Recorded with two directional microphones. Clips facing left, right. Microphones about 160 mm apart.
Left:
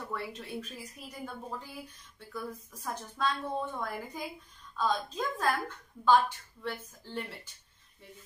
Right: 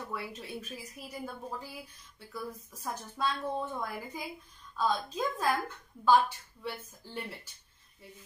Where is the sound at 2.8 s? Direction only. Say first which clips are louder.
Left 1 dB; 5° right (ahead or behind).